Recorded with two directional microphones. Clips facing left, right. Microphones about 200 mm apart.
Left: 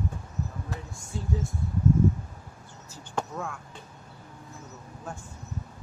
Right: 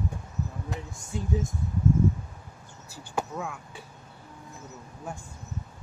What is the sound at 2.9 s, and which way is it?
Speech, 10° right (ahead or behind).